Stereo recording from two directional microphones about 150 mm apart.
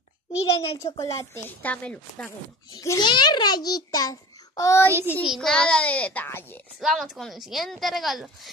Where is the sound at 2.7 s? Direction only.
25° left (ahead or behind).